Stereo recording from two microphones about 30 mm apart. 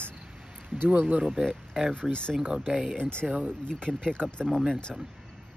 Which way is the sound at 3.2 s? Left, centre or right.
Right.